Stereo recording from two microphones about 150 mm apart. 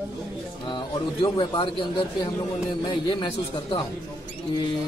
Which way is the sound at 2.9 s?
30° left (ahead or behind).